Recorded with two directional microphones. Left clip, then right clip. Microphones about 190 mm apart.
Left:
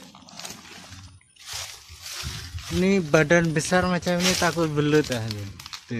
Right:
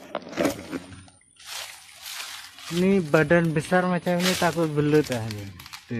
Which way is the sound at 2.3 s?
10° right (ahead or behind).